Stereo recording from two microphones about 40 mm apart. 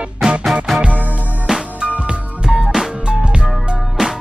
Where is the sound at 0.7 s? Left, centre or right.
Centre.